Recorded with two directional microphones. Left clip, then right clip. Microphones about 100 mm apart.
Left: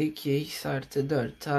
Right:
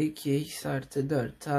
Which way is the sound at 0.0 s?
10° left (ahead or behind).